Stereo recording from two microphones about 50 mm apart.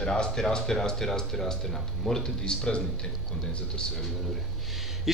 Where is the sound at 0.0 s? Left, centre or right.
Centre.